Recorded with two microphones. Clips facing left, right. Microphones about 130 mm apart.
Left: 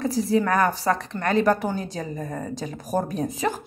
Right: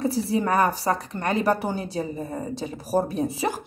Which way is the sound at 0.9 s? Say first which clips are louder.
Left 1 dB; 25° right (ahead or behind).